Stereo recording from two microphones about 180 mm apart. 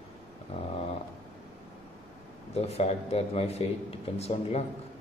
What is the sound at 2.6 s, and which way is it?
Speech, 35° left (ahead or behind).